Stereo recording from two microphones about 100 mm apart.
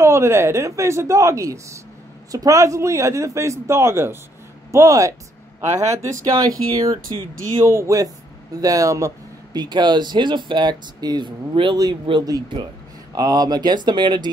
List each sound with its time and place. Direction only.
0.0 s a woman's voice: 30° right (ahead or behind); by 14.3 s 50° right (ahead or behind)